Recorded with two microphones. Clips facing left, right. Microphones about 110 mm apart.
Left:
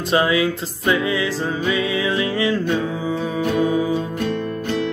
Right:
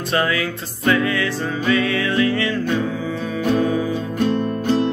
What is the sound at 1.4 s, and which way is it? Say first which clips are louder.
Music: right 1 dB; 25° left (ahead or behind).